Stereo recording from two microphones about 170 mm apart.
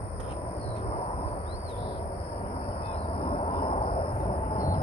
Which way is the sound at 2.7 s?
35° left (ahead or behind).